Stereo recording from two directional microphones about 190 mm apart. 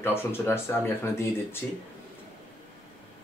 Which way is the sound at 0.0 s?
10° left (ahead or behind).